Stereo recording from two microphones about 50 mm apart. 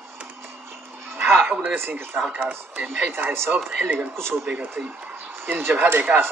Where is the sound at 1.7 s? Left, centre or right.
Right.